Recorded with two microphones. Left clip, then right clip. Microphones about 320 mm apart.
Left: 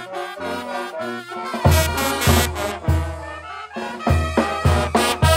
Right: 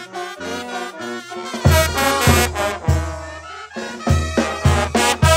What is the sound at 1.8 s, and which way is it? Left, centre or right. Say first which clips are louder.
Music: right 4 dB; right.